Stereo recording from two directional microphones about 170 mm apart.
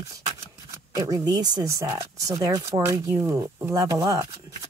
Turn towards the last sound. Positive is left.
turn(degrees=-20)  # may be behind; listen again after turning